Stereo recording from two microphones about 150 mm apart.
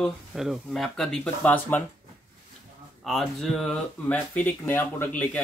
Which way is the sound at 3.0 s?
Centre (ahead or behind).